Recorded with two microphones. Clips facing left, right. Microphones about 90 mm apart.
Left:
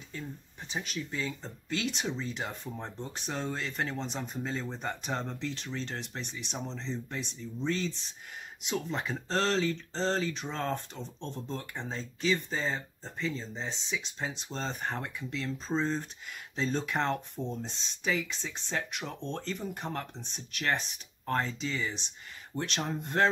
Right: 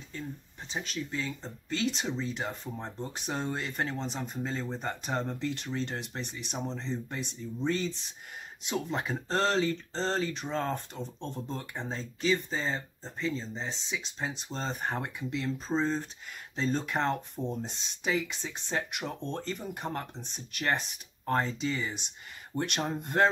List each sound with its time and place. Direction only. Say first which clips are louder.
0.7 s speech: right 1 dB; centre (ahead or behind)
15.0 s speech: right 2 dB; 20° right (ahead or behind)
15.7 s speech: right 1 dB; centre (ahead or behind)